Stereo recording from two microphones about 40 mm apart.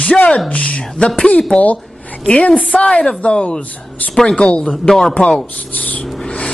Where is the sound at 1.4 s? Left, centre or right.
Left.